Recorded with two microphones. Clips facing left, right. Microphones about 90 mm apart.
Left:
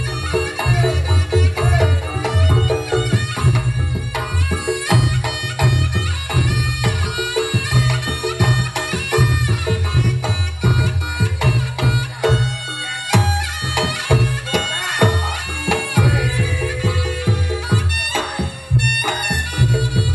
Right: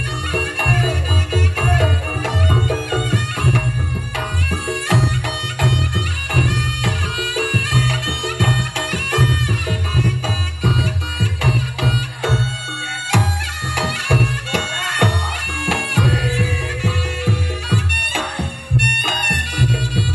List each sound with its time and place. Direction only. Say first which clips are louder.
0.3 s music: left 1 dB; 15° left (ahead or behind)
13.7 s bagpipes: left 1 dB; 15° left (ahead or behind)
15.6 s music: left 1 dB; 15° left (ahead or behind)